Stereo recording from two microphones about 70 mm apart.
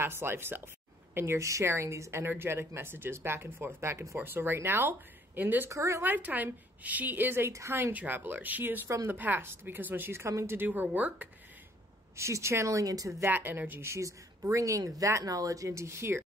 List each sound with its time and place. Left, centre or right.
0.0 s a woman's voice: right
4.2 s a woman's voice: right
5.7 s speech: right
6.0 s a woman's voice: right
8.8 s a woman's voice: right
9.1 s a woman's voice: right
10.2 s a woman's voice: right
10.7 s a woman's voice: right
12.2 s speech: right
13.2 s a woman's voice: right
13.8 s speech: right